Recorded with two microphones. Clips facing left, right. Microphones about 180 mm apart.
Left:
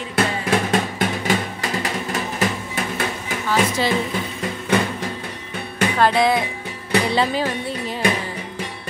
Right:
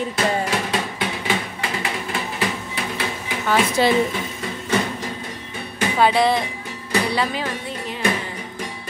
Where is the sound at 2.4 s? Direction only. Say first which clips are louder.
Left 2 dB; 45° left (ahead or behind).